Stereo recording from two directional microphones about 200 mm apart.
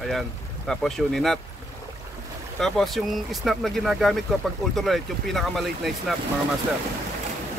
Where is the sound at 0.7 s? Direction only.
Centre (ahead or behind).